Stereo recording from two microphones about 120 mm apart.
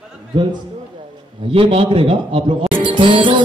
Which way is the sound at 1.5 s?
50° right (ahead or behind).